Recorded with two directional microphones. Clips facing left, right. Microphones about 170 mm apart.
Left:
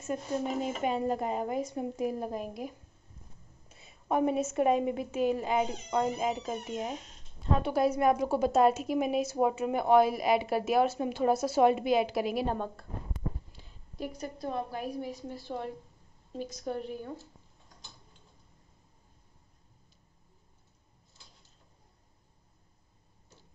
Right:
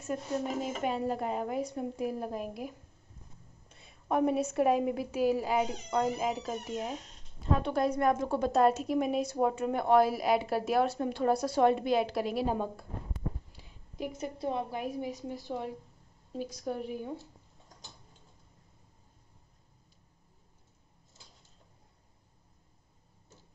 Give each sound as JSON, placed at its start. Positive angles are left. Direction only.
{"t": 0.0, "sound": "a woman's voice", "side_deg": 0}
{"t": 13.6, "sound": "a sound", "side_deg": -10}
{"t": 14.1, "sound": "a woman's voice", "side_deg": -25}